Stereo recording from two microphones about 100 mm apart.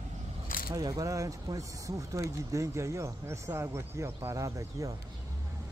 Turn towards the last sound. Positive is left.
turn(degrees=-35)  # may be behind; listen again after turning